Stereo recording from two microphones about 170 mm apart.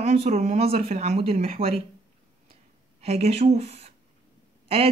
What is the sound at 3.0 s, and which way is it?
Speech, 40° right (ahead or behind).